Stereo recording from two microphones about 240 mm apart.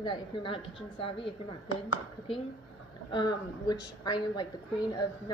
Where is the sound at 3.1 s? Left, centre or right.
Centre.